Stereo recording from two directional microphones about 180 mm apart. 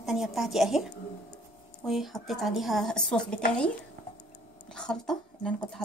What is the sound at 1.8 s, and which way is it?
Speech, centre (ahead or behind).